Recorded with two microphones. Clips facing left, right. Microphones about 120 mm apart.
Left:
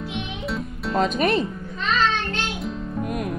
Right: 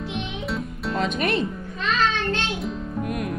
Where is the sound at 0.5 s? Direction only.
Centre (ahead or behind).